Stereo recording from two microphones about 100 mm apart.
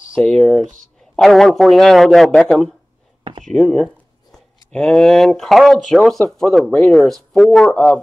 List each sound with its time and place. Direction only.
0.2 s a man's voice: 5° left (ahead or behind)
3.4 s a sound: 5° left (ahead or behind)
4.7 s a man's voice: 5° left (ahead or behind)